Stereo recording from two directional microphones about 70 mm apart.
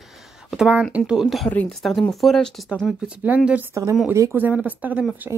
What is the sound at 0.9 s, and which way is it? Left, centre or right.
Speech, centre.